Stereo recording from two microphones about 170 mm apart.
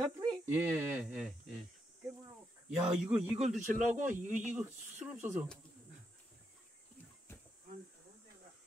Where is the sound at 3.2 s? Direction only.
40° right (ahead or behind).